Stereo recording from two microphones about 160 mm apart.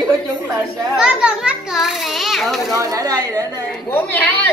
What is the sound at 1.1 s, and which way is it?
A child's voice, 5° right (ahead or behind).